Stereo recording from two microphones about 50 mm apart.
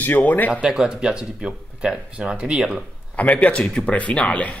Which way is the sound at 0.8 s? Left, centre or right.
Centre.